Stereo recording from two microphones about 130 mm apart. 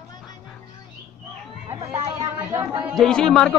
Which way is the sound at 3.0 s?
5° left (ahead or behind).